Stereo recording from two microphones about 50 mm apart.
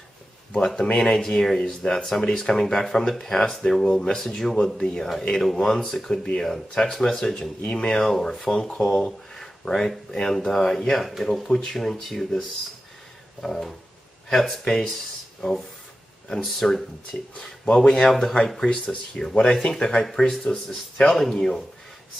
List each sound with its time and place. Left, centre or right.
0.9 s speech: centre
8.0 s speech: centre
16.3 s speech: centre